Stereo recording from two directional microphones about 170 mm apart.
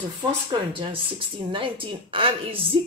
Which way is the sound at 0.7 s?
30° right (ahead or behind).